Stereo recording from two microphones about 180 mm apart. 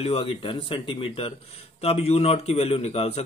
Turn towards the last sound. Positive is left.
turn(degrees=35)  # may be behind; listen again after turning